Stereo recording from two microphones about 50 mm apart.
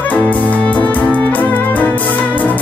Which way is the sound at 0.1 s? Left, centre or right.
Left.